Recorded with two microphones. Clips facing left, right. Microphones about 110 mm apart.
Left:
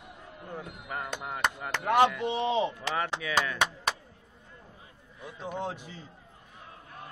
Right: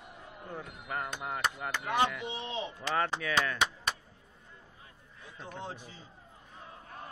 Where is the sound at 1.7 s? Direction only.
70° left (ahead or behind).